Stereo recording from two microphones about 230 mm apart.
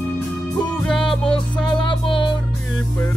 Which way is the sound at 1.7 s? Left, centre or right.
Left.